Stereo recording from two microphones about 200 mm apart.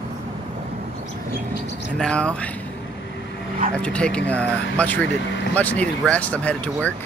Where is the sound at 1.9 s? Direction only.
5° left (ahead or behind).